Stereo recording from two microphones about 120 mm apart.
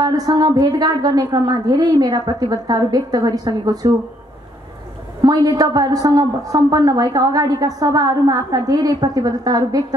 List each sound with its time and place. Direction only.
0.0 s a woman's voice: 30° right (ahead or behind)
5.2 s a woman's voice: 30° right (ahead or behind)